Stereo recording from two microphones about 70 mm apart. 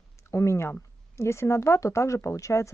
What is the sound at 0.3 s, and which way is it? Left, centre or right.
Speech, left.